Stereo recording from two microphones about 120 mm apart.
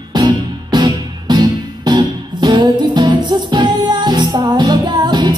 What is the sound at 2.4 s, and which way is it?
Music, 40° right (ahead or behind).